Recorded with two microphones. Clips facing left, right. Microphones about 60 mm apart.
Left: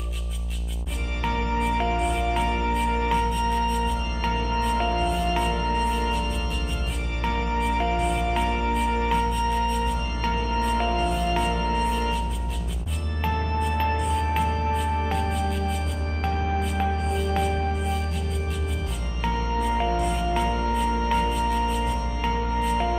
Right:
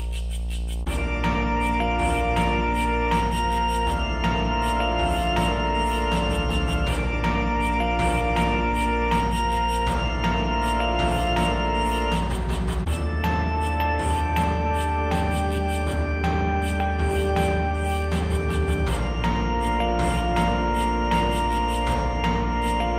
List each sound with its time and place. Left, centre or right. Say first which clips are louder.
1.6 s music: right 1 dB; centre
4.4 s music: right 1 dB; right
5.0 s music: right 1 dB; centre
9.1 s music: right 1 dB; centre
11.1 s music: right 1 dB; centre
13.9 s music: right 1 dB; centre
16.7 s music: right 1 dB; centre
19.6 s music: left 1 dB; centre
21.1 s music: right 1 dB; centre
21.8 s music: right 3 dB; right
22.6 s music: even; centre